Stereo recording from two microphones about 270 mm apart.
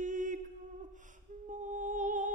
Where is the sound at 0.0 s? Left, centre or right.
Right.